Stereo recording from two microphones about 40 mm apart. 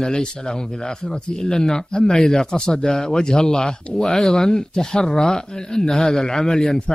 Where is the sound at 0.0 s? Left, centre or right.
Centre.